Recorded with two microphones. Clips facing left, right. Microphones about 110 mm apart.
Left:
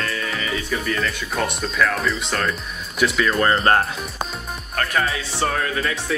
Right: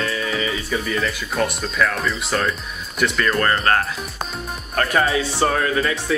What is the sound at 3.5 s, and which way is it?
Speech, 30° left (ahead or behind).